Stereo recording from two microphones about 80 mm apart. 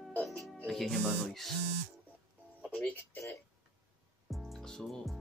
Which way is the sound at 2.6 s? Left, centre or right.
Centre.